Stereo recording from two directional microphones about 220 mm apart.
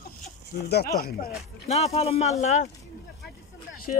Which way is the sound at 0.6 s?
45° left (ahead or behind).